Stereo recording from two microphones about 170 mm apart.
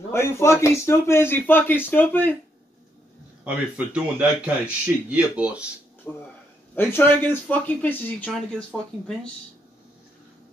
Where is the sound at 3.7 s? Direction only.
10° right (ahead or behind).